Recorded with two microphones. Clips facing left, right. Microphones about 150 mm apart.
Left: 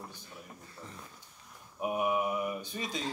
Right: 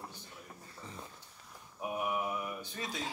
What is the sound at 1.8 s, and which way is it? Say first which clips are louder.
Mantra: left 5 dB; 20° left (ahead or behind).